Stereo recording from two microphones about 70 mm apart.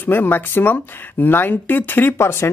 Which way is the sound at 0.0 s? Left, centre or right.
Left.